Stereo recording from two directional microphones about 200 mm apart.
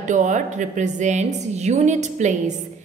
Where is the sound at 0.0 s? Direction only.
35° right (ahead or behind).